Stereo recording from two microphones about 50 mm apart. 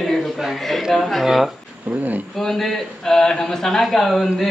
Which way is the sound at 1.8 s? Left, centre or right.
Right.